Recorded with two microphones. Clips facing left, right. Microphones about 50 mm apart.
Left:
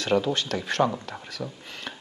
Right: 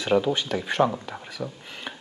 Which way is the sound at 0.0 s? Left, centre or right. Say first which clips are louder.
Right 2 dB; centre.